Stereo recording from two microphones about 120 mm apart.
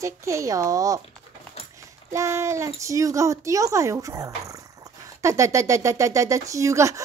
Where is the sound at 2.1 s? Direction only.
25° right (ahead or behind).